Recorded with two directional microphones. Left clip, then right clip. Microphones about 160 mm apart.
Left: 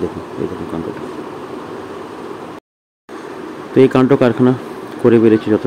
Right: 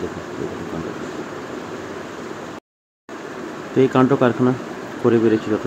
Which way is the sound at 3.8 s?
40° left (ahead or behind).